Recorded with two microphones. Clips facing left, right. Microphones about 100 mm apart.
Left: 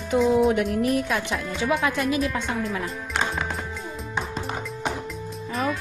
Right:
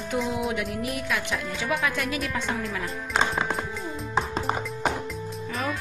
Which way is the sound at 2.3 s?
5° left (ahead or behind).